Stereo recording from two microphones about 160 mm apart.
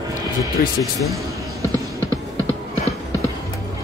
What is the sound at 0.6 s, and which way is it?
Speech, 60° left (ahead or behind).